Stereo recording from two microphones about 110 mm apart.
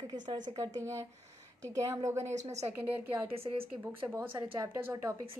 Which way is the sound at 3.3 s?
60° right (ahead or behind).